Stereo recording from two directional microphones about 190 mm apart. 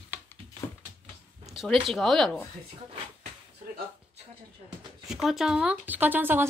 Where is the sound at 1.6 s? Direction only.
Centre (ahead or behind).